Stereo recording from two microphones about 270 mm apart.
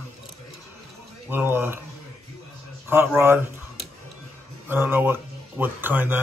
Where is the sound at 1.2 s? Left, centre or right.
Centre.